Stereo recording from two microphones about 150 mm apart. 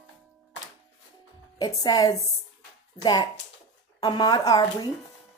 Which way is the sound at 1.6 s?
25° left (ahead or behind).